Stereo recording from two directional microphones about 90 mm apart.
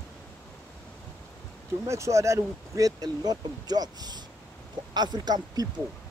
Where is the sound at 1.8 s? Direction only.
35° right (ahead or behind); by 5.6 s 50° right (ahead or behind).